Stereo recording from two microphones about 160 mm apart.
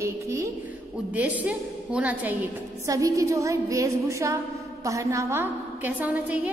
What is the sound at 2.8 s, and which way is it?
Music, 20° right (ahead or behind).